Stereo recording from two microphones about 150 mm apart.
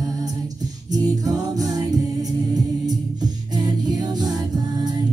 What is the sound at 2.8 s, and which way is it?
Music, 25° right (ahead or behind).